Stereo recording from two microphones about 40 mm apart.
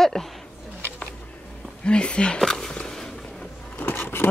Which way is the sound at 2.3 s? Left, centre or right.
Centre.